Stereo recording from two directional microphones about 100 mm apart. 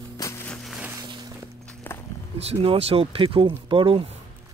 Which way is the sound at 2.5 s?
85° right.